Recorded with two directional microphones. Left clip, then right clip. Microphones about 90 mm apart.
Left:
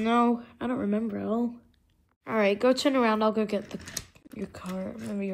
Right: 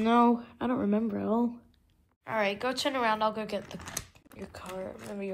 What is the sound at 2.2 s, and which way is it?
Speech, 25° right (ahead or behind).